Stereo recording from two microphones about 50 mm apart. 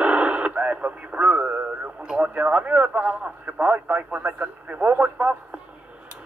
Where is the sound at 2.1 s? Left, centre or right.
Right.